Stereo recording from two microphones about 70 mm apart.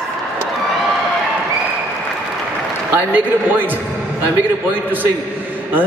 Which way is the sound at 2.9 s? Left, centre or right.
Right.